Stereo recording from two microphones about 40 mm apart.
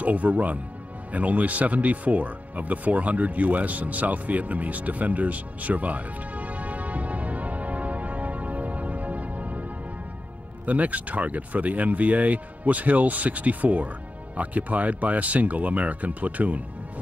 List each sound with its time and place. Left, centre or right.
0.0 s speech: right
1.1 s music: right
10.6 s speech: right